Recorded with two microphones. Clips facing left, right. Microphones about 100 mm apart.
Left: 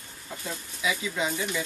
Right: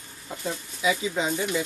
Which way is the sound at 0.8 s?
30° right (ahead or behind).